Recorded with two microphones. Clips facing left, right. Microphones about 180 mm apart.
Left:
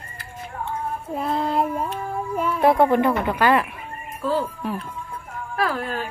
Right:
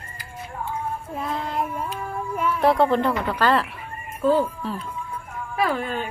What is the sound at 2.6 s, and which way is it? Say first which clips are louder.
A woman's voice: left 2 dB; 15° left (ahead or behind).